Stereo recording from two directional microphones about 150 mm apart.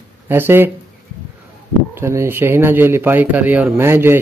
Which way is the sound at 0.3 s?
15° right (ahead or behind).